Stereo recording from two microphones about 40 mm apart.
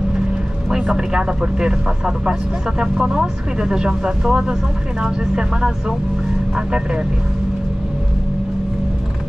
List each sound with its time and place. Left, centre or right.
0.9 s speech: right